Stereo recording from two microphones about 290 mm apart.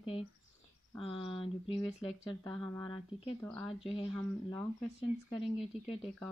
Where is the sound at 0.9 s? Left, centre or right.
Centre.